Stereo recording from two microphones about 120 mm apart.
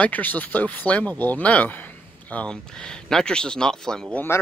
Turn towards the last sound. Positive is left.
turn(degrees=10)  # may be behind; listen again after turning